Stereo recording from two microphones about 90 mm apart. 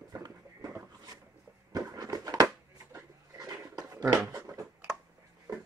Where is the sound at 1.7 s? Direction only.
45° right (ahead or behind).